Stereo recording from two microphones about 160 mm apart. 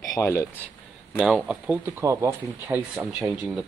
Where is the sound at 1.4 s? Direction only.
10° right (ahead or behind).